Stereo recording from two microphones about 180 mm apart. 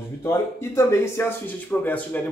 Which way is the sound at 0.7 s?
15° left (ahead or behind).